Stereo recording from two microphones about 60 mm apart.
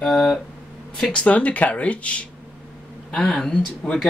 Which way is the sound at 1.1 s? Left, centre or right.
Left.